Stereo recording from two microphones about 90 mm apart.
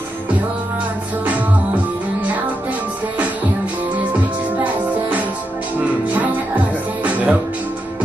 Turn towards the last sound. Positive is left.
turn(degrees=-15)  # may be behind; listen again after turning